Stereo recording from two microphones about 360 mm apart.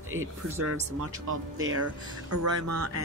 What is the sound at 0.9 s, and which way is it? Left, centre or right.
Speech, right.